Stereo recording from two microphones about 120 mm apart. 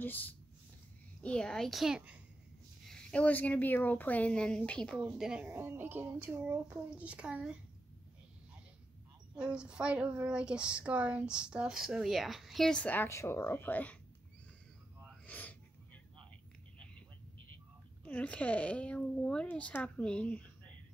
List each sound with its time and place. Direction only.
0.0 s speech: 15° left (ahead or behind); by 2.1 s 5° right (ahead or behind)
2.9 s speech: 10° left (ahead or behind)
4.9 s a child's voice: 5° right (ahead or behind)
5.5 s a child's voice: 20° right (ahead or behind)
9.3 s a child's voice: 10° right (ahead or behind); by 13.9 s 15° left (ahead or behind)
15.2 s a sound: 15° left (ahead or behind)
18.0 s speech: 10° left (ahead or behind)